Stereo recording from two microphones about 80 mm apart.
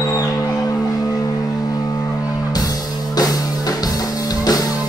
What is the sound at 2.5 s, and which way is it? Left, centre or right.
Music, left.